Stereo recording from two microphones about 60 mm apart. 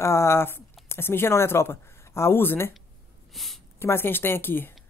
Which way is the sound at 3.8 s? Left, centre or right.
Left.